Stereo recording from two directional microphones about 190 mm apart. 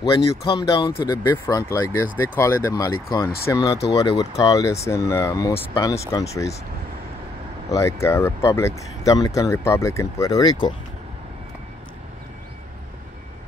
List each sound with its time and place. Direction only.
0.1 s speech: 25° left (ahead or behind)
7.7 s speech: 15° left (ahead or behind)